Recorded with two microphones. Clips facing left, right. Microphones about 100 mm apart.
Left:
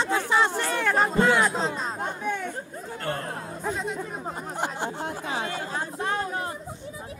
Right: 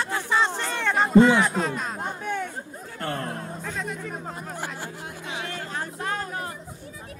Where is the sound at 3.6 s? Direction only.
20° left (ahead or behind).